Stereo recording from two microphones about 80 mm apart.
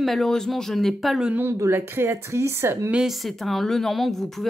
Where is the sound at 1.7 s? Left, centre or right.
Right.